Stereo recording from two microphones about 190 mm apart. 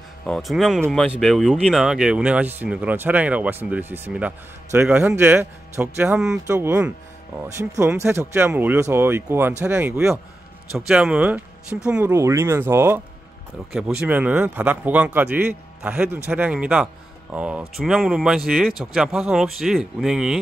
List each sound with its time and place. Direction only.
0.2 s a man's voice: centre (ahead or behind)
6.4 s a man's voice: 10° right (ahead or behind)